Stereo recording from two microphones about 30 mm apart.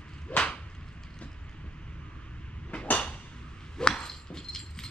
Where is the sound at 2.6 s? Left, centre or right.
Left.